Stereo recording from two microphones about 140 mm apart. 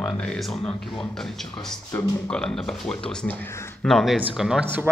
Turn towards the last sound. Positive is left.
turn(degrees=0)  # may be behind; listen again after turning